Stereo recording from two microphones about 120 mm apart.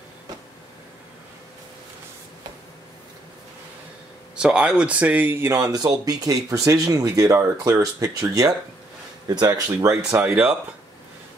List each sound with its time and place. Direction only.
4.4 s speech: 10° right (ahead or behind)
5.6 s speech: 30° right (ahead or behind)
9.3 s speech: 35° right (ahead or behind)
10.2 s speech: 10° right (ahead or behind)